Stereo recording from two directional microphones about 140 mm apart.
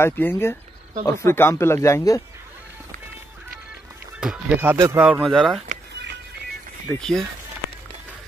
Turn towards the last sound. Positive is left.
turn(degrees=0)  # may be behind; listen again after turning